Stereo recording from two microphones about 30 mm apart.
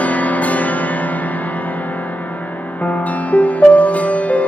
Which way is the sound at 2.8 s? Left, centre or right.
Left.